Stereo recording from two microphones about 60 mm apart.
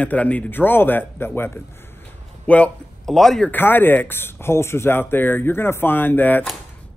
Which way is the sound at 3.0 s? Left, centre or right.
Centre.